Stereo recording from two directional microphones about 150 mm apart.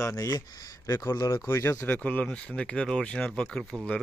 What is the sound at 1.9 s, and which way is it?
Speech, 10° left (ahead or behind).